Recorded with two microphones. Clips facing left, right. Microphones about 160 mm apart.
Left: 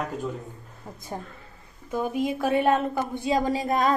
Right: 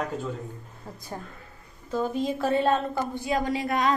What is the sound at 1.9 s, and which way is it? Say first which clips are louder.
A woman's voice: left 1 dB; 15° left (ahead or behind).